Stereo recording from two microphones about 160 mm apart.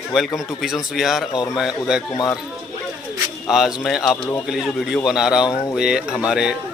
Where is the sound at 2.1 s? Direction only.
20° left (ahead or behind).